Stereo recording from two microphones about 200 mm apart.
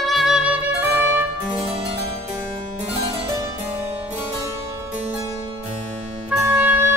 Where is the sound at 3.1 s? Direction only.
15° right (ahead or behind).